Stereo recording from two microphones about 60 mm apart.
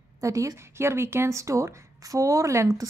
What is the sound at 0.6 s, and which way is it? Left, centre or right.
A woman's voice, right.